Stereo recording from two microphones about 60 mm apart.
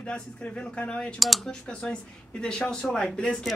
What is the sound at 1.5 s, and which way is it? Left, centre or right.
Speech, centre.